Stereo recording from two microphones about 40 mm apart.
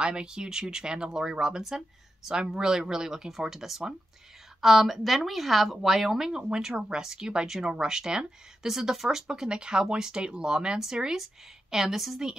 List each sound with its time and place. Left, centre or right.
0.0 s speech: right
8.7 s speech: centre